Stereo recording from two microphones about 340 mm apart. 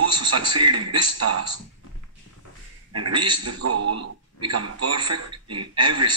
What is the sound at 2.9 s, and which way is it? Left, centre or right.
A man's voice, right.